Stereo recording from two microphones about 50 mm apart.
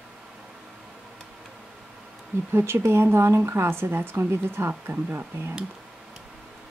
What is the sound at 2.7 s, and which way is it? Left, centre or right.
A woman's voice, right.